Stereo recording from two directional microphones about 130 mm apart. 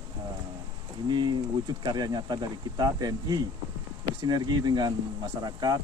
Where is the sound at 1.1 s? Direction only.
35° right (ahead or behind).